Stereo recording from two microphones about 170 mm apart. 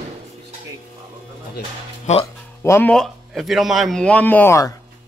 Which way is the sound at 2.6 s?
15° left (ahead or behind).